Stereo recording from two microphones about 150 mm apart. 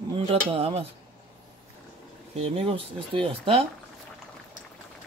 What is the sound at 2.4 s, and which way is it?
Dishes, 40° right (ahead or behind).